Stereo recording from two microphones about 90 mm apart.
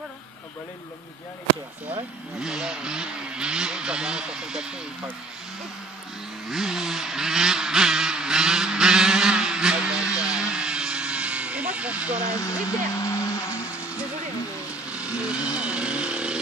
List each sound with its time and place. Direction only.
2.4 s speech: 10° right (ahead or behind)
6.5 s vehicle: 5° right (ahead or behind)
10.1 s music: 10° right (ahead or behind)
10.5 s vehicle: 10° right (ahead or behind)
12.3 s speech: 35° left (ahead or behind)
12.9 s vehicle: 35° left (ahead or behind)
14.9 s speech: 10° right (ahead or behind)